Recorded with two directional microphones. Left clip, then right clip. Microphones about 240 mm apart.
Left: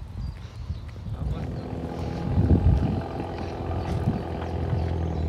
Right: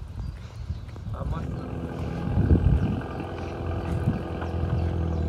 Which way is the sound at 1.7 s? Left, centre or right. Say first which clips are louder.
Left 4 dB; left.